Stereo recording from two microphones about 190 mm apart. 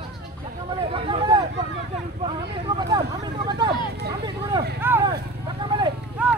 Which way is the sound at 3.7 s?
60° right (ahead or behind).